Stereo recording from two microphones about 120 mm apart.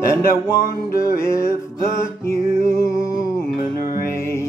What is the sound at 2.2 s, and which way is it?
Music, 25° left (ahead or behind).